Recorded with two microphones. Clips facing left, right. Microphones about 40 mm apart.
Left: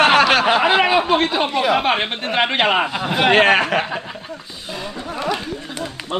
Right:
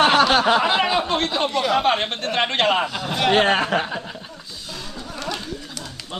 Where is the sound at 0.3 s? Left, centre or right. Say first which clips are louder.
Left 2 dB; left.